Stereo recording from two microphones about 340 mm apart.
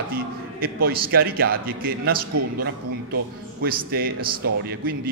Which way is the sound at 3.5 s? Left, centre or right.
Right.